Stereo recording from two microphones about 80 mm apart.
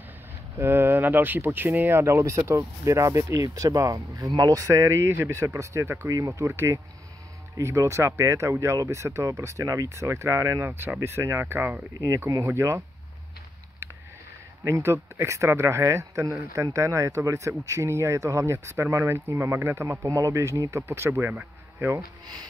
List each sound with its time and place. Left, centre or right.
0.6 s speech: right
14.6 s speech: right